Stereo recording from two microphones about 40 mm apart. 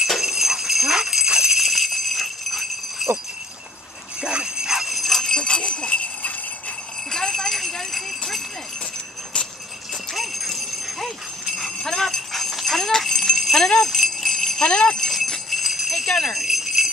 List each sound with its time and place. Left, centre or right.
0.1 s jingle bell: centre
1.6 s jingle bell: centre
4.2 s jingle bell: centre
5.4 s jingle bell: centre
7.1 s jingle bell: centre
10.1 s jingle bell: centre
14.6 s jingle bell: centre
15.5 s jingle bell: centre
16.4 s jingle bell: centre